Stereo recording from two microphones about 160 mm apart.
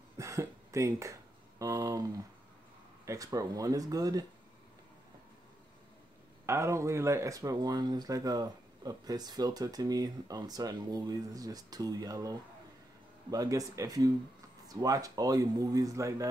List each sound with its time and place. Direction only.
0.2 s a sound: 20° right (ahead or behind)
3.1 s speech: 20° right (ahead or behind)
6.4 s speech: 15° right (ahead or behind)